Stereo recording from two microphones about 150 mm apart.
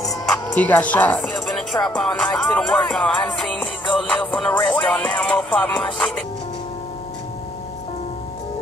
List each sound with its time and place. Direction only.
0.6 s music: 10° left (ahead or behind)